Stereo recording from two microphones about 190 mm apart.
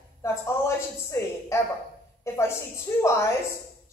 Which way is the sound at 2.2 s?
15° left (ahead or behind).